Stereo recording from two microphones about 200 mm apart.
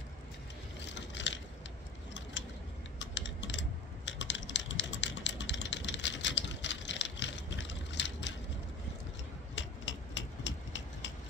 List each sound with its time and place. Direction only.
0.9 s crushing: 65° left (ahead or behind)
2.4 s typing: 65° left (ahead or behind)
9.6 s a sound: 65° left (ahead or behind)